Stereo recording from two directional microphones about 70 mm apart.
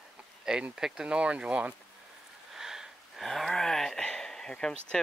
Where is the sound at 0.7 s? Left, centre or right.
Centre.